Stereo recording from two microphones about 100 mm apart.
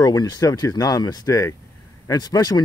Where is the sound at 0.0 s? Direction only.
40° left (ahead or behind).